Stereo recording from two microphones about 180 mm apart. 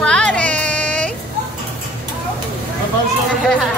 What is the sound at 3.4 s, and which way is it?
Speech, centre (ahead or behind).